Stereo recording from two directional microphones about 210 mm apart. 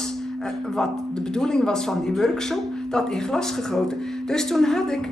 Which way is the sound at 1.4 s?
5° left (ahead or behind).